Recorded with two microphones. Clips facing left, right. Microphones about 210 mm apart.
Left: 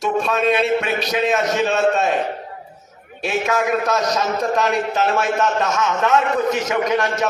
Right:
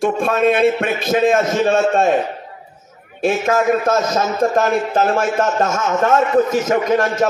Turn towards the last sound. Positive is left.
turn(degrees=-50)  # may be behind; listen again after turning